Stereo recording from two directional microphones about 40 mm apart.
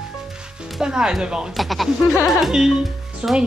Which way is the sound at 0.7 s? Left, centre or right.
Centre.